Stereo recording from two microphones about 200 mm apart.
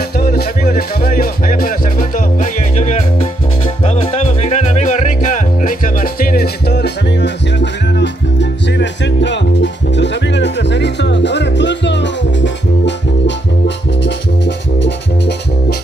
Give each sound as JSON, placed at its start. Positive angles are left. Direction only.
{"t": 0.2, "sound": "music", "side_deg": 50}